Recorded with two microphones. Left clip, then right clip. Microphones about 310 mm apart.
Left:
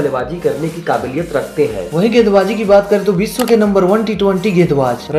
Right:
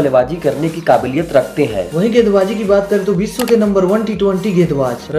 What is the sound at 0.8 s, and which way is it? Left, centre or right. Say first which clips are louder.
Speech: right 5 dB; right.